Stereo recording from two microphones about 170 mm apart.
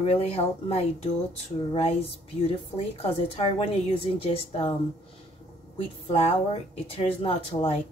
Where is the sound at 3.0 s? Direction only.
35° left (ahead or behind).